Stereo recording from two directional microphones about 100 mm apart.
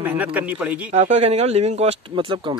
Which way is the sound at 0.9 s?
90° right.